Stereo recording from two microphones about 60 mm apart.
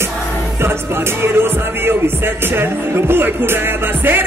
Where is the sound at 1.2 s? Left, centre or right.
Right.